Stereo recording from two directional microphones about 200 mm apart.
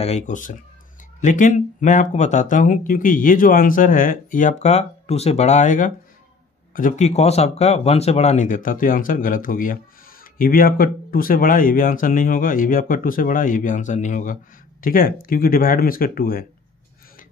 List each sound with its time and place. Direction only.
0.0 s speech: 35° left (ahead or behind)